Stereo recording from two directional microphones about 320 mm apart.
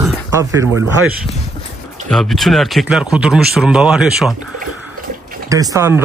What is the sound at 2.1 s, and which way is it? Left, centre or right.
Speech, centre.